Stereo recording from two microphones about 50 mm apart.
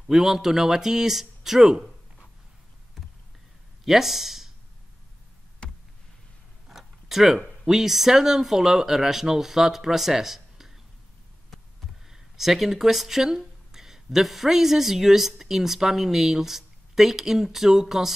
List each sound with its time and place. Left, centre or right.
0.1 s speech: centre
3.8 s speech: centre
5.6 s a sound: left
6.7 s a sound: centre
7.6 s speech: centre
12.1 s speech: centre